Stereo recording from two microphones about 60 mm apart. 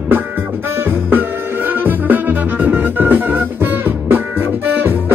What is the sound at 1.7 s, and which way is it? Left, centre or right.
Music, right.